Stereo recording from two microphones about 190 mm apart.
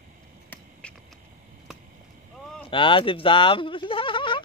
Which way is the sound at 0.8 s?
5° left (ahead or behind).